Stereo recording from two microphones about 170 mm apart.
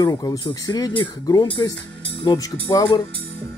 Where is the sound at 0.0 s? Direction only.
20° left (ahead or behind).